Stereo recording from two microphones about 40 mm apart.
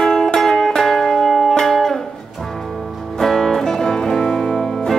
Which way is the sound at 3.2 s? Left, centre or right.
Centre.